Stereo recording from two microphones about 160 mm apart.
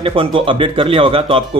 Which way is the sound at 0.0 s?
35° right (ahead or behind).